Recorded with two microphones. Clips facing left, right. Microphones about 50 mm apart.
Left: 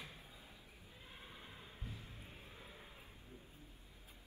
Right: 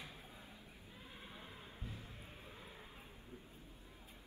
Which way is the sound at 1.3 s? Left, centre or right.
Right.